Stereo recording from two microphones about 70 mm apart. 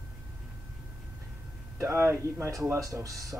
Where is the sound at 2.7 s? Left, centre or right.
Right.